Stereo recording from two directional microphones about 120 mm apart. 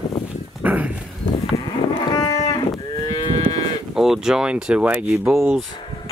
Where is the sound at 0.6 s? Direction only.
15° right (ahead or behind).